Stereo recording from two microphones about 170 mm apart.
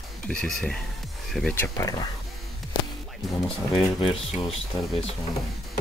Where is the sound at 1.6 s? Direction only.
20° left (ahead or behind).